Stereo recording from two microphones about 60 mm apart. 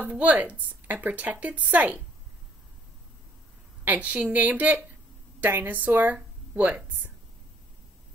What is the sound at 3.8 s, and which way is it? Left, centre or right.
A woman's voice, right.